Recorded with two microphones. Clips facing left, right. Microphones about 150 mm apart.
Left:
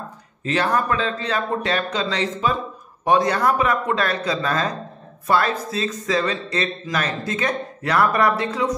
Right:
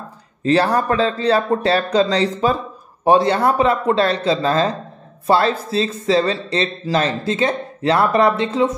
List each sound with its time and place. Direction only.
0.4 s speech: 35° right (ahead or behind)